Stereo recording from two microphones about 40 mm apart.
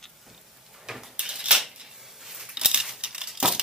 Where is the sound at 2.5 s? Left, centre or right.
Right.